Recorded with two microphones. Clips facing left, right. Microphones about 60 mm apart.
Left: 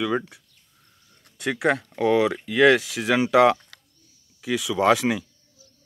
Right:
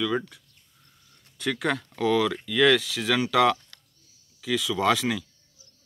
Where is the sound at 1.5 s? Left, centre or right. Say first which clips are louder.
Left 4 dB; left.